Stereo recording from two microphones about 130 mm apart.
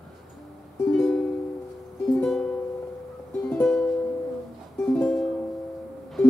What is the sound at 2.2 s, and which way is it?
Music, 5° left (ahead or behind).